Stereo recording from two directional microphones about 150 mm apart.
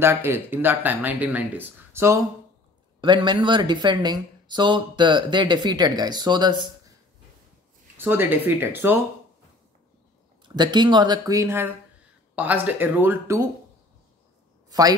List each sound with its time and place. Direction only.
0.0 s speech: 15° right (ahead or behind)
3.0 s speech: 30° right (ahead or behind)
8.0 s speech: 15° right (ahead or behind)
10.4 s speech: 30° right (ahead or behind); by 13.4 s 15° right (ahead or behind)
14.7 s speech: 25° right (ahead or behind)